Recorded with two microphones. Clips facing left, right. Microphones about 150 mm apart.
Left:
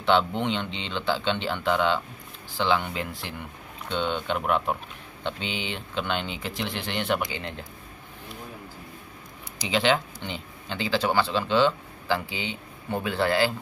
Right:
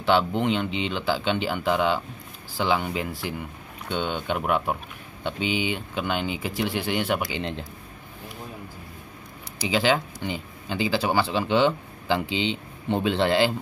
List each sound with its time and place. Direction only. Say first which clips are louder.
0.0 s speech: right 1 dB; 5° right (ahead or behind)
9.7 s a man's voice: right 1 dB; 5° right (ahead or behind); by 13.5 s 20° right (ahead or behind)